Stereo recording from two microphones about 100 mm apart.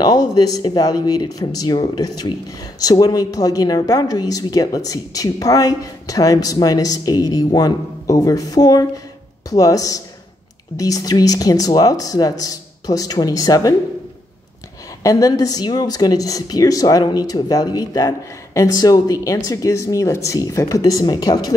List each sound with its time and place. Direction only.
0.0 s a woman's voice: 40° left (ahead or behind)
15.0 s a woman's voice: 35° left (ahead or behind)